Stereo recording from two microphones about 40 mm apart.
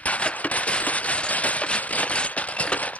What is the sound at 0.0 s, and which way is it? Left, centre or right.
Fireworks, left.